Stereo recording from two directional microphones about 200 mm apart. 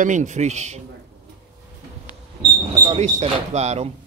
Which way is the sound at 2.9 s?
35° right (ahead or behind).